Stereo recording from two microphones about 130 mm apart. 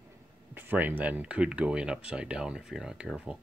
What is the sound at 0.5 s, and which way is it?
Speech, 15° right (ahead or behind).